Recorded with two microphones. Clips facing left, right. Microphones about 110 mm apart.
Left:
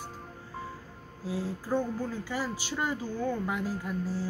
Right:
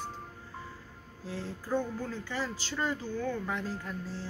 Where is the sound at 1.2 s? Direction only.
10° left (ahead or behind).